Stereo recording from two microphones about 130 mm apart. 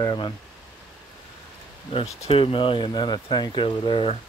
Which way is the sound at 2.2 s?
45° left (ahead or behind).